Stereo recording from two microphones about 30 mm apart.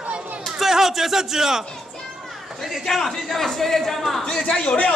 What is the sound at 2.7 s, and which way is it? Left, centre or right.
Speech, centre.